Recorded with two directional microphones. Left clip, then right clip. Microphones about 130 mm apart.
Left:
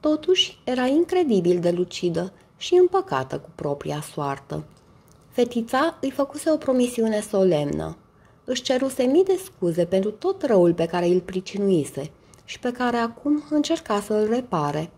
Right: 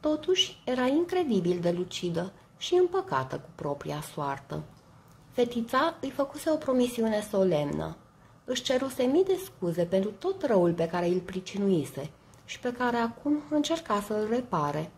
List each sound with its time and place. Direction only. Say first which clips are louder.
0.0 s speech: left 6 dB; 25° left (ahead or behind)